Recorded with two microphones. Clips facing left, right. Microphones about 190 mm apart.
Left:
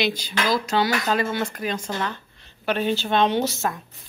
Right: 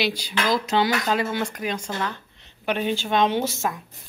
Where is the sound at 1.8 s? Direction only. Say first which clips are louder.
Left 1 dB; centre (ahead or behind).